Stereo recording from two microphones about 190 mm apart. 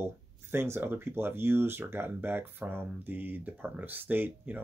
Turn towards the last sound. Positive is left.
turn(degrees=-10)  # may be behind; listen again after turning